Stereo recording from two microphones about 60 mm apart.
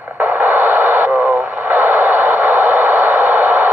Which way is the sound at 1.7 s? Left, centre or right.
Right.